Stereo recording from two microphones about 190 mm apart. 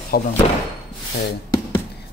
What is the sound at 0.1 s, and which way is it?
Speech, 55° left (ahead or behind).